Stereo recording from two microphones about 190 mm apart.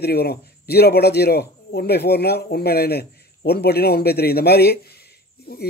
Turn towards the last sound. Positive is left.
turn(degrees=55)  # may be behind; listen again after turning